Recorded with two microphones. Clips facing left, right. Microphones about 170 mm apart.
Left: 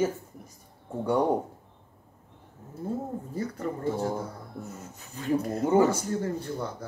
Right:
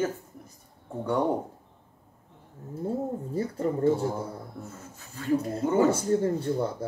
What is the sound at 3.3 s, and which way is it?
Speech, 30° right (ahead or behind).